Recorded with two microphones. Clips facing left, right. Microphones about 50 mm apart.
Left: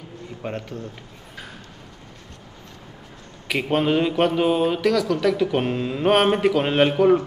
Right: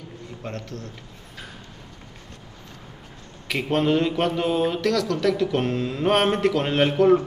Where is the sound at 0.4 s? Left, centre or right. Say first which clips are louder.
Left 4 dB; centre.